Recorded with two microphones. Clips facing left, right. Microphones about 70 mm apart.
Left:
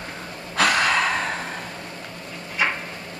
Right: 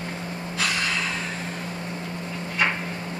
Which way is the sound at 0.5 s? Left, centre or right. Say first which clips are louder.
Left 8 dB; left.